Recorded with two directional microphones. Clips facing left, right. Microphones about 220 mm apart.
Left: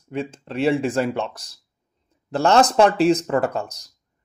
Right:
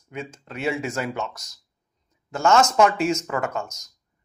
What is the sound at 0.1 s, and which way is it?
Speech, 30° left (ahead or behind).